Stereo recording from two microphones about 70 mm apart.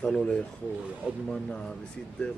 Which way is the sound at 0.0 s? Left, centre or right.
Centre.